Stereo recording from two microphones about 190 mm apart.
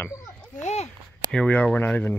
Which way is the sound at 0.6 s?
35° left (ahead or behind).